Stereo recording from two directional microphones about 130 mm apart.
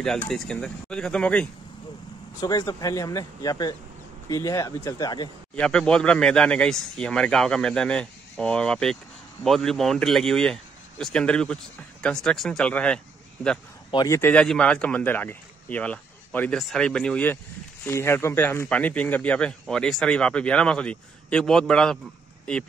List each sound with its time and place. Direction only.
0.3 s speech: 5° left (ahead or behind)
2.4 s speech: 30° left (ahead or behind)
5.6 s speech: 5° left (ahead or behind)
14.0 s speech: 20° left (ahead or behind)
14.3 s speech: 5° left (ahead or behind)